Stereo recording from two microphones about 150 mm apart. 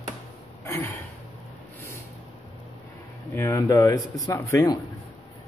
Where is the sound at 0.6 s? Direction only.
15° left (ahead or behind).